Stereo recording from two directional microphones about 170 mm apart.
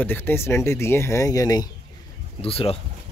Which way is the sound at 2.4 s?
35° left (ahead or behind).